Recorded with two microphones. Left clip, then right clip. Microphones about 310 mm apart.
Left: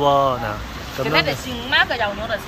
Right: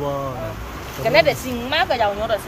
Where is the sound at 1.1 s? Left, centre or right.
Right.